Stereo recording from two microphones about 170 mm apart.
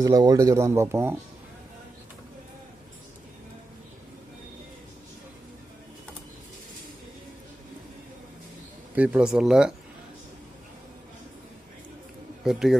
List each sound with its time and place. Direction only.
0.0 s speech: 20° right (ahead or behind)
8.9 s speech: 10° right (ahead or behind)
12.4 s speech: centre (ahead or behind)